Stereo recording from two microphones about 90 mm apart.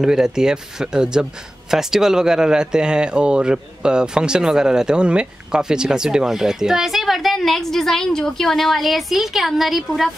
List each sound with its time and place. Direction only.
0.0 s speech: 5° right (ahead or behind)